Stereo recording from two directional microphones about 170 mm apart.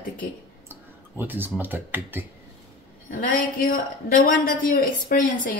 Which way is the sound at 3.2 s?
55° left (ahead or behind).